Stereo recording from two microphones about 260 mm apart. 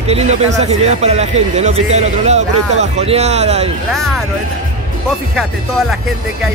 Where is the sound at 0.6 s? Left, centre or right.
Right.